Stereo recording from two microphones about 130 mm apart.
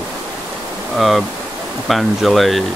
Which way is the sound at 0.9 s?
Centre (ahead or behind).